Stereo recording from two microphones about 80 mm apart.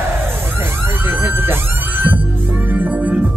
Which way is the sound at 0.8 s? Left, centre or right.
Right.